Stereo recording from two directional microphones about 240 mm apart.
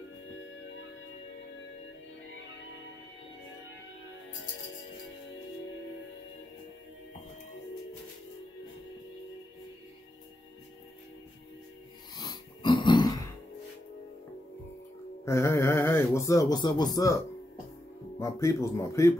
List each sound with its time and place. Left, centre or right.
12.2 s dog: centre
15.2 s speech: centre
18.2 s speech: centre